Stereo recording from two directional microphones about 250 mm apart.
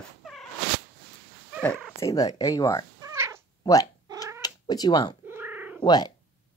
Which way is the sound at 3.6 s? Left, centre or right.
Centre.